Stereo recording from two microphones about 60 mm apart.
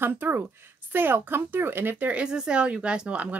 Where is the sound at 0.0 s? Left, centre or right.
Right.